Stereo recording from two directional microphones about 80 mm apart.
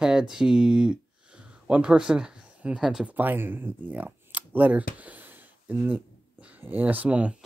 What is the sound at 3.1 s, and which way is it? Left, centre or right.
Speech, right.